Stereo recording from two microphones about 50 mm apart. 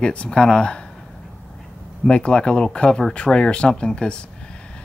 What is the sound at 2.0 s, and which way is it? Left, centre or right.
A man's voice, centre.